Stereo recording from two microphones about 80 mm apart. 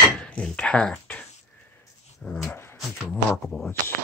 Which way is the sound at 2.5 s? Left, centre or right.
Left.